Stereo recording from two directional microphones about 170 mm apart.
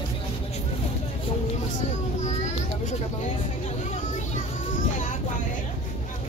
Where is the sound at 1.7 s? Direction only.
40° left (ahead or behind).